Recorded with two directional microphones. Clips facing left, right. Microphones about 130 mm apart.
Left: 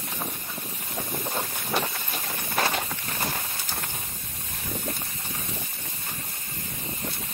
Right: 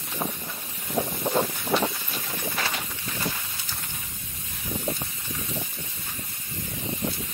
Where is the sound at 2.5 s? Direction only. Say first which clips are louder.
Left 10 dB; 45° left (ahead or behind).